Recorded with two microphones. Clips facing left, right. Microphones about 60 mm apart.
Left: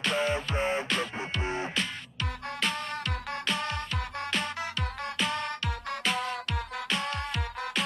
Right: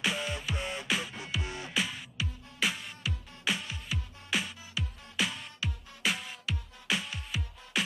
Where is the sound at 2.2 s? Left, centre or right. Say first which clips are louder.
Left 10 dB; left.